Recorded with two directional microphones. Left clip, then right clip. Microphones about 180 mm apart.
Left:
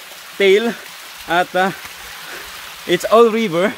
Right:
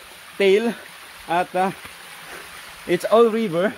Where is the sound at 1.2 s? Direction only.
20° left (ahead or behind).